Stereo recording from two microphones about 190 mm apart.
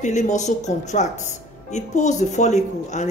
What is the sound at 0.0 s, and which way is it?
Speech, 40° left (ahead or behind).